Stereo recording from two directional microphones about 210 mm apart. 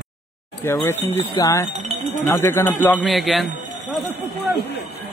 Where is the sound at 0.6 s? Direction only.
15° left (ahead or behind).